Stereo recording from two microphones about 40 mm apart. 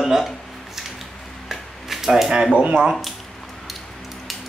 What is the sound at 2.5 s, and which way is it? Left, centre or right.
Speech, right.